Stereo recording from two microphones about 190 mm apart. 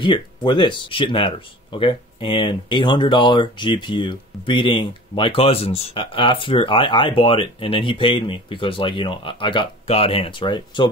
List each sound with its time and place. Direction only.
0.0 s speech: 25° left (ahead or behind)